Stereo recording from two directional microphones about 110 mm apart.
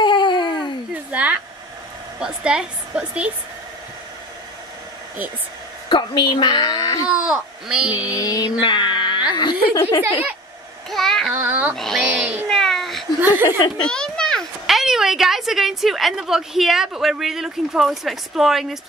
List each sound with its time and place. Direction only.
0.0 s a sound: 45° left (ahead or behind)
1.1 s hair dryer: 10° right (ahead or behind)
2.1 s a woman's voice: 10° right (ahead or behind)
5.9 s a woman's voice: 45° left (ahead or behind)
7.2 s speech: 5° right (ahead or behind)
8.1 s music: 35° left (ahead or behind)
9.3 s a woman's voice: 40° left (ahead or behind)
10.9 s child singing: centre (ahead or behind)
11.3 s speech: 15° right (ahead or behind)
11.7 s a child's voice: centre (ahead or behind)
12.1 s cat: 15° right (ahead or behind)
12.4 s cat: 5° left (ahead or behind)
13.2 s speech: 15° right (ahead or behind)
13.8 s a child's voice: 5° left (ahead or behind)